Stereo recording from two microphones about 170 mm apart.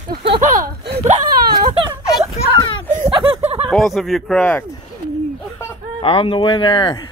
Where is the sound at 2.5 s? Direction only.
30° left (ahead or behind).